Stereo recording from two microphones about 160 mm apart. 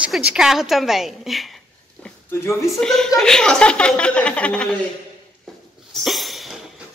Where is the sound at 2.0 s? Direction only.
15° left (ahead or behind).